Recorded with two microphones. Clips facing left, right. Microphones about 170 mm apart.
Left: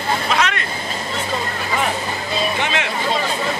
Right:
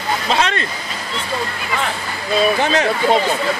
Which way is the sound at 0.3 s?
30° right (ahead or behind).